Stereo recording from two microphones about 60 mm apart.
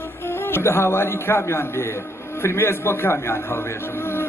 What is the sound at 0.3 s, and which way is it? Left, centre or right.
A man's voice, left.